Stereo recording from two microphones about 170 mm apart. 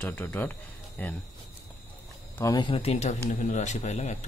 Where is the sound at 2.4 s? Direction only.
25° left (ahead or behind); by 4.3 s 40° left (ahead or behind).